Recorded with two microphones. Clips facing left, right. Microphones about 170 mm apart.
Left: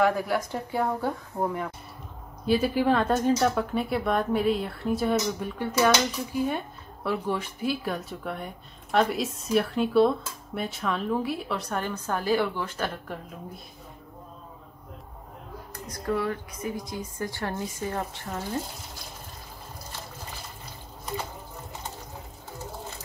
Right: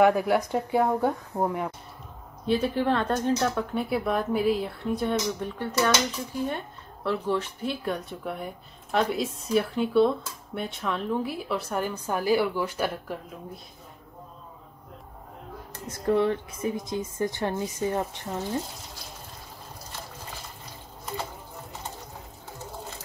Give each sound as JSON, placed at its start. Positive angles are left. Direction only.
{"t": 0.0, "sound": "speech", "side_deg": -15}
{"t": 2.4, "sound": "speech", "side_deg": 10}
{"t": 7.1, "sound": "speech", "side_deg": 10}
{"t": 15.7, "sound": "a woman's voice", "side_deg": -25}